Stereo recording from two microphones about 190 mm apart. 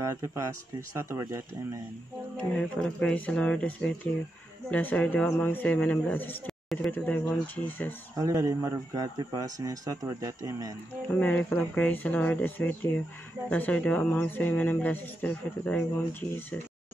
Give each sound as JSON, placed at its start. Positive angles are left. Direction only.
{"t": 0.0, "sound": "speech", "side_deg": -15}
{"t": 2.3, "sound": "speech", "side_deg": 5}
{"t": 8.2, "sound": "speech", "side_deg": -15}
{"t": 11.1, "sound": "speech", "side_deg": 10}